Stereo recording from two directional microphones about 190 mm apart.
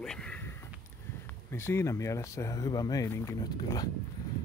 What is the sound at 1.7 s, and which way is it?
Speech, 15° left (ahead or behind).